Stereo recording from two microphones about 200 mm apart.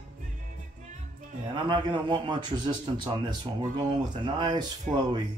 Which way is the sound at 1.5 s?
25° right (ahead or behind).